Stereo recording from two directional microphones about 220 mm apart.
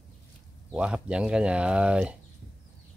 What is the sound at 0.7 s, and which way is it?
Speech, 5° right (ahead or behind).